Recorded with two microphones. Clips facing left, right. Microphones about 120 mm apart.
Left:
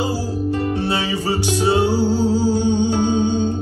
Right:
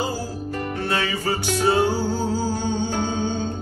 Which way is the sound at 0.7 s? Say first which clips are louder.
Left 4 dB; 35° left (ahead or behind).